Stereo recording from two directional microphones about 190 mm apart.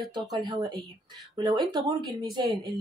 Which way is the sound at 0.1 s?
20° right (ahead or behind).